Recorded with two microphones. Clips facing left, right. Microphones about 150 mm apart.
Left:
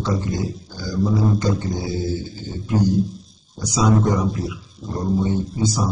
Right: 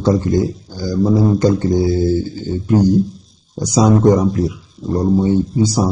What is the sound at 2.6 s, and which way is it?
A man's voice, 40° right (ahead or behind).